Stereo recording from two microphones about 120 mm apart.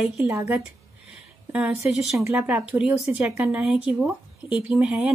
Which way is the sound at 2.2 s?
15° right (ahead or behind).